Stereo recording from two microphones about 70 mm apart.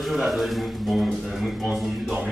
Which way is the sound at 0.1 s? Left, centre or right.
Centre.